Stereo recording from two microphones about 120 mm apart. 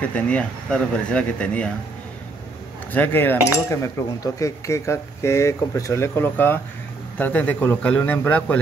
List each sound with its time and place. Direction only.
0.0 s speech: 10° left (ahead or behind)
2.9 s speech: 15° left (ahead or behind)